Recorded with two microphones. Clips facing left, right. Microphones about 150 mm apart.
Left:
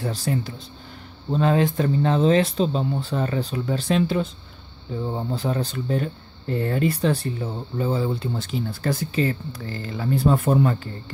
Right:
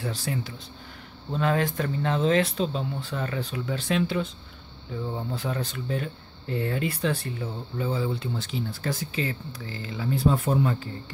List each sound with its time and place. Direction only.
0.0 s speech: 40° left (ahead or behind)
1.3 s speech: 30° left (ahead or behind); by 10.9 s 55° left (ahead or behind)